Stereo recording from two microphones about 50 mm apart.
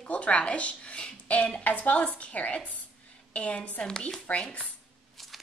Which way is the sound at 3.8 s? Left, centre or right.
Centre.